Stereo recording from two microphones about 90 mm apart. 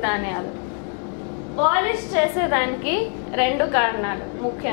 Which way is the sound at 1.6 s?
15° left (ahead or behind).